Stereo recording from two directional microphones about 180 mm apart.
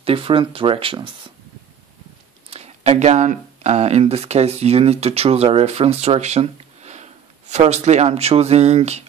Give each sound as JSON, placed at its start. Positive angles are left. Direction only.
{"t": 0.0, "sound": "speech", "side_deg": -30}
{"t": 2.5, "sound": "speech", "side_deg": -35}